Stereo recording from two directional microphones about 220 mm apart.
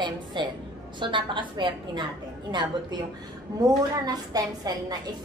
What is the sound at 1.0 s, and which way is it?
A woman's voice, 20° right (ahead or behind).